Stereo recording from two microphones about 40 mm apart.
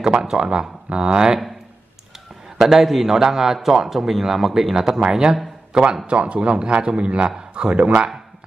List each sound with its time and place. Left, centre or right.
0.2 s a man's voice: centre
2.5 s a man's voice: centre
6.0 s speech: right